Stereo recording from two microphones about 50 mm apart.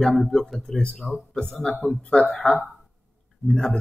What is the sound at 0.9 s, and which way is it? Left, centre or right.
Speech, centre.